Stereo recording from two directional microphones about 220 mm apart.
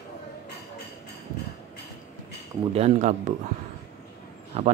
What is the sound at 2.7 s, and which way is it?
Speech, 30° right (ahead or behind).